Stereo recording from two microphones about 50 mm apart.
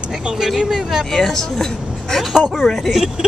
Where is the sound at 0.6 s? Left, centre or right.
Centre.